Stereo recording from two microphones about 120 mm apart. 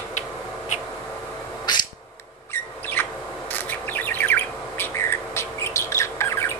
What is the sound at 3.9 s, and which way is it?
Bird, 15° left (ahead or behind).